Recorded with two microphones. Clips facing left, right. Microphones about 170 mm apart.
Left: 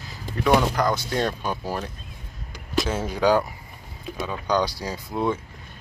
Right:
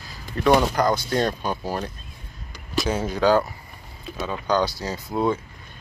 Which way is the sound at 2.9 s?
10° left (ahead or behind).